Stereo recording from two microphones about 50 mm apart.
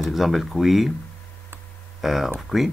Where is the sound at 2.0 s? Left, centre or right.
Centre.